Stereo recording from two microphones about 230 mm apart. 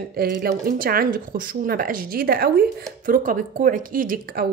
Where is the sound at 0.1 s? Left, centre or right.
Right.